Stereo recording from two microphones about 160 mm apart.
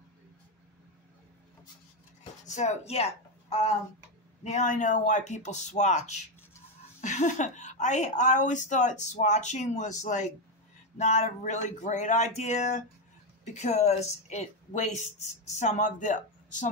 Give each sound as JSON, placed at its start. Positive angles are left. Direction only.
{"t": 2.4, "sound": "a woman's voice", "side_deg": 45}